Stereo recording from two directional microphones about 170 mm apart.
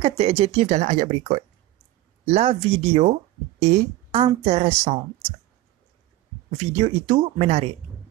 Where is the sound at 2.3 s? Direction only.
35° right (ahead or behind).